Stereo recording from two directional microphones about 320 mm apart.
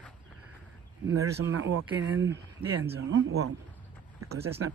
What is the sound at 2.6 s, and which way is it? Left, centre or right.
Speech, centre.